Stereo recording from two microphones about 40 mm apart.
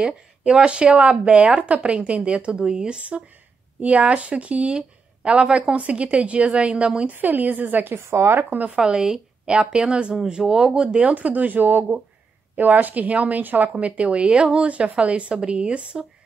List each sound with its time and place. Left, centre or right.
0.4 s a woman's voice: right
7.2 s speech: right
7.9 s speech: right
8.6 s a woman's voice: right
11.1 s speech: right
13.7 s a woman's voice: right